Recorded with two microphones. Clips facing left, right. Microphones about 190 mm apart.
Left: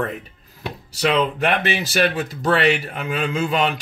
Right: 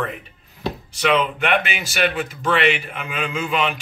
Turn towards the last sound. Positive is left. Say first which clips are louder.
# left 2 dB
turn(degrees=35)  # may be behind; listen again after turning